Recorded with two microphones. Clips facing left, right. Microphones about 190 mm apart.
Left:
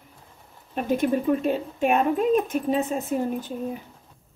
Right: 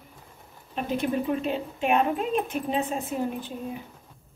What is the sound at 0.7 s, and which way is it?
Speech, 45° left (ahead or behind).